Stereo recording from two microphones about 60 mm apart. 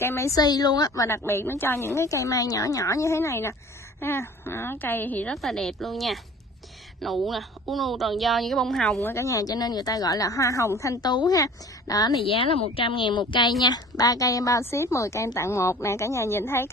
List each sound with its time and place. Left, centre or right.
0.0 s speech: left
0.4 s a woman's voice: left
1.0 s speech: left
1.9 s speech: left
4.0 s a woman's voice: left
5.3 s a woman's voice: centre
9.1 s speech: left
13.5 s speech: left
14.6 s speech: left